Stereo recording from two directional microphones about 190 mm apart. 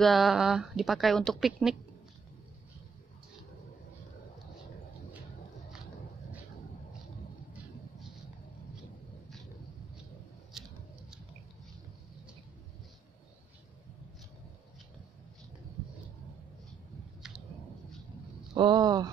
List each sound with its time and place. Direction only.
0.0 s speech: centre (ahead or behind)
18.5 s speech: 25° right (ahead or behind)